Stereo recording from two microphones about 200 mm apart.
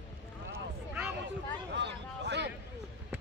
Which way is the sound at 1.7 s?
60° right (ahead or behind).